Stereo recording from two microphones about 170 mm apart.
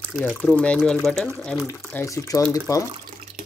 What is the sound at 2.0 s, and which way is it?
Speech, 20° left (ahead or behind).